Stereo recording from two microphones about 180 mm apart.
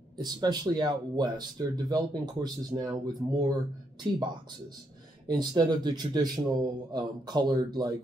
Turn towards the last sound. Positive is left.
turn(degrees=-20)  # may be behind; listen again after turning